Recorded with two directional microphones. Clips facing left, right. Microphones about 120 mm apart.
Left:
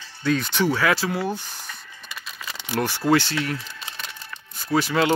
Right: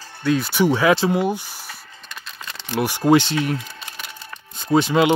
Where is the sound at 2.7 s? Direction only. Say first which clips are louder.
Right 4 dB; 15° right (ahead or behind).